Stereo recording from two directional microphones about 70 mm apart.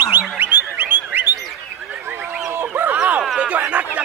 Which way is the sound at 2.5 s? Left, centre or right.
Right.